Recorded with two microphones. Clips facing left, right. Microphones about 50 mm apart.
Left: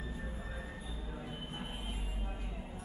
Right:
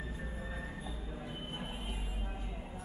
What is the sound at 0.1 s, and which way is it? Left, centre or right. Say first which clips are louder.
Music: right 1 dB; centre.